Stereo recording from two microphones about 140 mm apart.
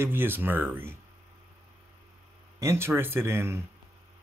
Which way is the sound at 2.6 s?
20° right (ahead or behind).